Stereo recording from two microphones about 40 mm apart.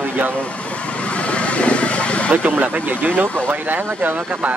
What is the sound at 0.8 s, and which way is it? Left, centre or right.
Vehicle, left.